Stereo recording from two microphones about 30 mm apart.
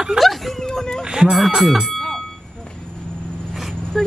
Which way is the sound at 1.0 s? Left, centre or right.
Right.